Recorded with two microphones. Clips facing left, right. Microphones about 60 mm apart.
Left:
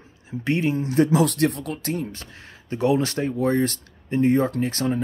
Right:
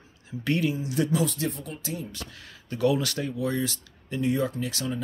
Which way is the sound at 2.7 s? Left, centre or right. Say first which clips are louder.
Left 4 dB; left.